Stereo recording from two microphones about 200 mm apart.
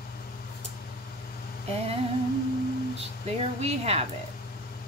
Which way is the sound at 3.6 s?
30° right (ahead or behind).